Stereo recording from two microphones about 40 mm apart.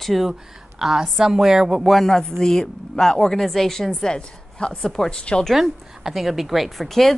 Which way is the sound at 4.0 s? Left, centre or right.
Left.